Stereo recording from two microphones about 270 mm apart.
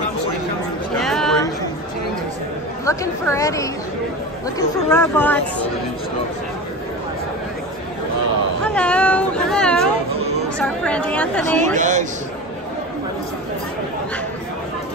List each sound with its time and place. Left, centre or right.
0.9 s chatter: centre
2.8 s speech: centre
8.6 s a sound: centre
10.6 s a woman's voice: centre
11.7 s a man's voice: right